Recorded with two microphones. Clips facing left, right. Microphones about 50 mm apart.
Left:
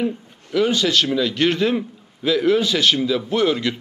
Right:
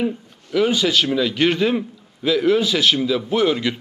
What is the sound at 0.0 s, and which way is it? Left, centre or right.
A man's voice, centre.